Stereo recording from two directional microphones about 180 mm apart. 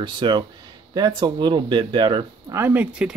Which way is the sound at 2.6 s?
10° right (ahead or behind).